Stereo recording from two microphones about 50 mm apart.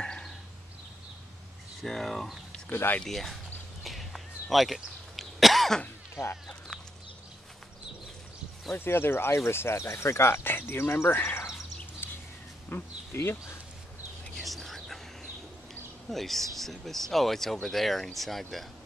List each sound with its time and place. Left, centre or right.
0.0 s a sound: centre
1.8 s speech: centre
3.8 s cough: centre
8.7 s speech: left
11.1 s speech: left
12.0 s a sound: left
12.7 s speech: left
14.3 s whispering: centre
16.1 s speech: centre